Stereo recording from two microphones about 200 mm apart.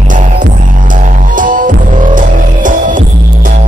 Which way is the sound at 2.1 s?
40° right (ahead or behind).